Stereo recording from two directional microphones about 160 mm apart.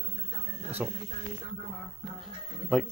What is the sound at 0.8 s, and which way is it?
Speech, 10° right (ahead or behind).